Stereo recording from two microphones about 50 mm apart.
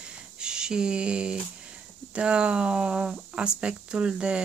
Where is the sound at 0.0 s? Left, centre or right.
Centre.